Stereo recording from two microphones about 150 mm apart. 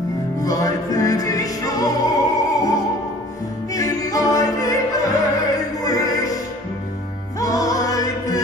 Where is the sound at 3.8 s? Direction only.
20° left (ahead or behind).